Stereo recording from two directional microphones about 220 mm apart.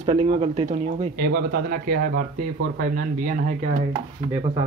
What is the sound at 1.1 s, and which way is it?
Speech, 45° right (ahead or behind).